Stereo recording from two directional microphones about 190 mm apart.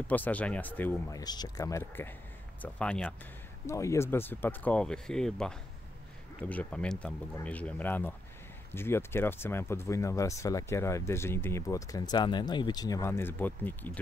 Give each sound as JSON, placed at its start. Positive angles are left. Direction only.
{"t": 0.1, "sound": "speech", "side_deg": 10}
{"t": 1.2, "sound": "speech", "side_deg": 20}